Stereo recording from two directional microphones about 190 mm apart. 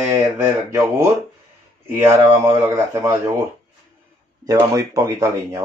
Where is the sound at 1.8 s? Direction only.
10° right (ahead or behind).